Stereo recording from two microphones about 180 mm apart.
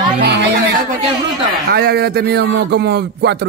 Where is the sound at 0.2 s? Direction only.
65° right (ahead or behind).